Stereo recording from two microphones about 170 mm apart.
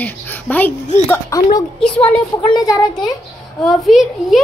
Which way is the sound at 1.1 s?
20° left (ahead or behind).